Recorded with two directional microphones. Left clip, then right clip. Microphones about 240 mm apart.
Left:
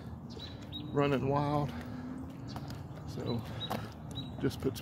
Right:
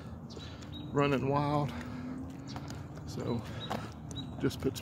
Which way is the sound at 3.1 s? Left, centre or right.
Centre.